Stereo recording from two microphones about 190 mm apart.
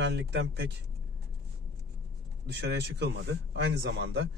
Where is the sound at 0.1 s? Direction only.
65° right (ahead or behind).